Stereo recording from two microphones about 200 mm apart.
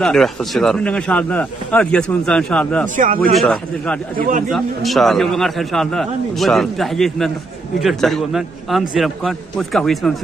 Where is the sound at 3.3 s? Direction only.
Centre (ahead or behind).